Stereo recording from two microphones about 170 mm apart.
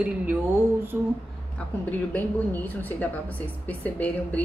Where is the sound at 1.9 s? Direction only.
10° left (ahead or behind).